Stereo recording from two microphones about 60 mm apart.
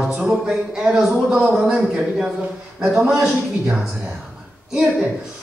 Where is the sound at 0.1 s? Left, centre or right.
Centre.